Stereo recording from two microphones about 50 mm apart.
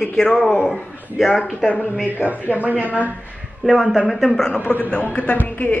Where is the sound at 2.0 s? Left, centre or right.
Right.